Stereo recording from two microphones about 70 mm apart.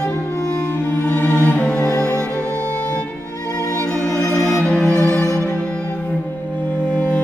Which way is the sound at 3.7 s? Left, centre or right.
Centre.